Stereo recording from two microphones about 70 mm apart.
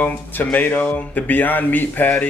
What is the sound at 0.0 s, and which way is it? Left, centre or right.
Speech, left.